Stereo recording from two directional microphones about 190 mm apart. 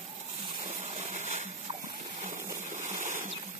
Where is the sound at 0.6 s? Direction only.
35° right (ahead or behind).